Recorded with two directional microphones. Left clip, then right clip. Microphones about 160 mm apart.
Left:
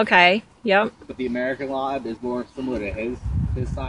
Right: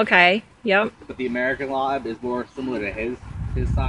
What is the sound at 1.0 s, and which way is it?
Speech, 65° left (ahead or behind).